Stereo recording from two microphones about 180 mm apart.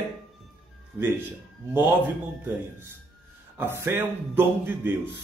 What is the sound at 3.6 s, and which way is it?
Speech, 15° right (ahead or behind).